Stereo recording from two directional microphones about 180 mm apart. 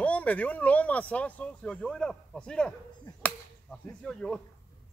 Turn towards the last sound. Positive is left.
turn(degrees=5)  # may be behind; listen again after turning